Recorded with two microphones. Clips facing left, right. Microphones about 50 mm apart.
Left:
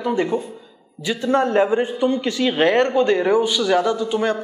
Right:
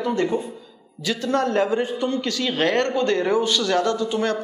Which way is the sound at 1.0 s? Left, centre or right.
Centre.